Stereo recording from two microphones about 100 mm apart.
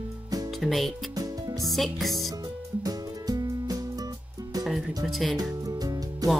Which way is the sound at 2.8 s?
40° right (ahead or behind).